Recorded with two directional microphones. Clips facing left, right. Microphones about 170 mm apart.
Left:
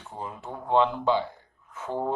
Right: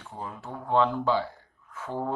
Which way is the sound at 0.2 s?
20° left (ahead or behind).